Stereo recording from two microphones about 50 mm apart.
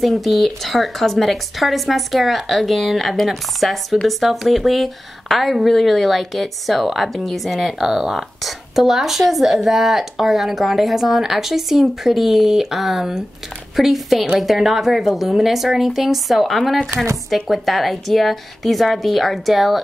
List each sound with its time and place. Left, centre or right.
0.0 s speech: centre